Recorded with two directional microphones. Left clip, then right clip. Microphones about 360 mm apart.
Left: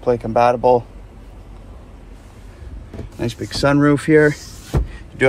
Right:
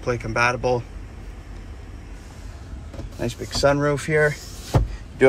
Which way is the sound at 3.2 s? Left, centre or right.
Left.